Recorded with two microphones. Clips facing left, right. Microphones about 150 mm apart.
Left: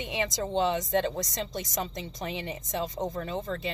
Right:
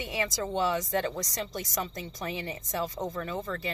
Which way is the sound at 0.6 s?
25° left (ahead or behind).